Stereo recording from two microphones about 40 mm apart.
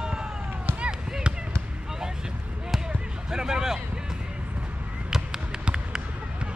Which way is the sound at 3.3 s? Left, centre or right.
Centre.